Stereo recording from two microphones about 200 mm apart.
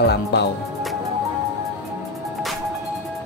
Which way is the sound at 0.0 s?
55° left (ahead or behind).